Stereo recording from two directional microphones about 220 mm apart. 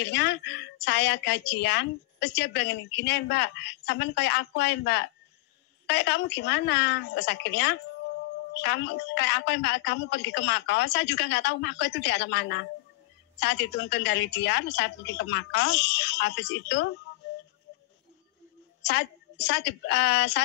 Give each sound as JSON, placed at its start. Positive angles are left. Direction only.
{"t": 0.0, "sound": "a woman's voice", "side_deg": 50}
{"t": 18.8, "sound": "a woman's voice", "side_deg": 50}